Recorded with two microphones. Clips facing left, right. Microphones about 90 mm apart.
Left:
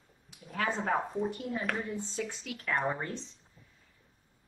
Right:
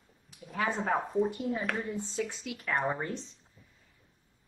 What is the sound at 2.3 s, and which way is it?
Speech, 15° right (ahead or behind).